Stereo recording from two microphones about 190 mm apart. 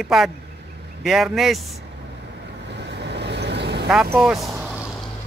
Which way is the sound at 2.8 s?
65° right (ahead or behind).